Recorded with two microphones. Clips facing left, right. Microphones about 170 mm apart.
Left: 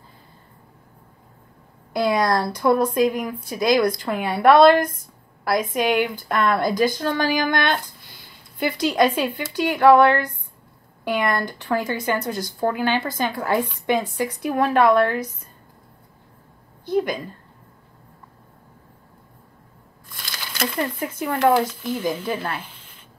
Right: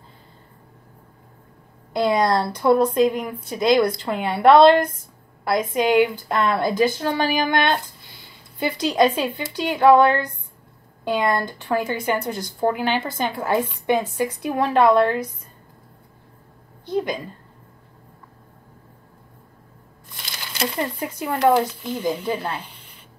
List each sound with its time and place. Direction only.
2.0 s a woman's voice: 20° right (ahead or behind)
7.5 s a sound: 20° right (ahead or behind)
8.8 s a woman's voice: 25° right (ahead or behind)
16.9 s a woman's voice: 25° right (ahead or behind)
21.2 s speech: 15° right (ahead or behind)